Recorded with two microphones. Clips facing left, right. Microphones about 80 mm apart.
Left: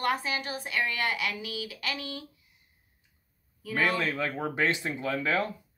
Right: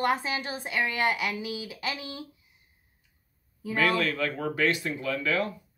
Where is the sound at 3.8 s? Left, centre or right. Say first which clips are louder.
Right 2 dB; left.